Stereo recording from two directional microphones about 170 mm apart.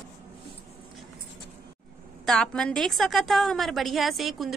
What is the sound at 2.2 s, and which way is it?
A woman's voice, 5° left (ahead or behind).